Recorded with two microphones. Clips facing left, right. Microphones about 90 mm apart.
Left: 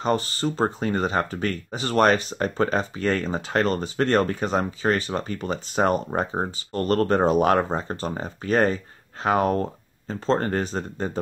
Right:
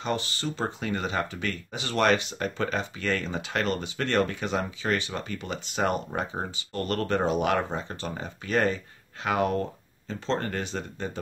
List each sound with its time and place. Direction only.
0.0 s speech: 40° left (ahead or behind)